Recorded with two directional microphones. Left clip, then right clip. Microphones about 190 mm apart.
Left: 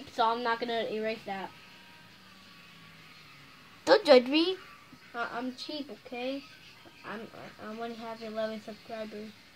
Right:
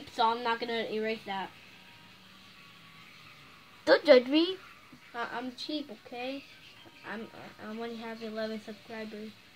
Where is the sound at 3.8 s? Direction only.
20° left (ahead or behind).